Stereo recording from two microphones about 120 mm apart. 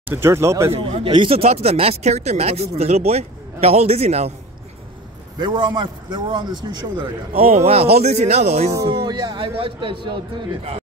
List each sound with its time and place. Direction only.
0.1 s speech: 20° right (ahead or behind)
1.1 s speech: 55° right (ahead or behind)
5.4 s a man's voice: 35° right (ahead or behind)
7.3 s speech: 60° right (ahead or behind)
8.8 s a man's voice: 40° right (ahead or behind)